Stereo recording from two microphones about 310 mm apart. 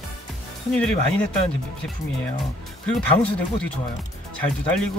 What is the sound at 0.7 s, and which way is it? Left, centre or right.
Speech, centre.